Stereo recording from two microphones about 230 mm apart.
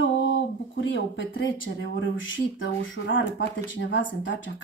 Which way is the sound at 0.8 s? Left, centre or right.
Left.